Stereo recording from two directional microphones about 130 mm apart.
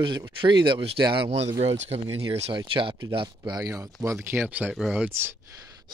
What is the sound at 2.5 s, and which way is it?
Speech, 40° right (ahead or behind).